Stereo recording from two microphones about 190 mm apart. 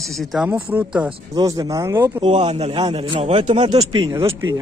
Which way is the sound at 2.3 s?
35° right (ahead or behind).